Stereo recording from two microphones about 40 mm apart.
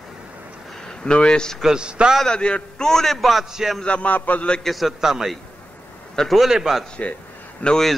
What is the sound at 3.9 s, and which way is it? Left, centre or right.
Speech, left.